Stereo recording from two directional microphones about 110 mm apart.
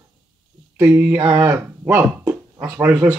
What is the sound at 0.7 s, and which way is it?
Speech, 15° right (ahead or behind).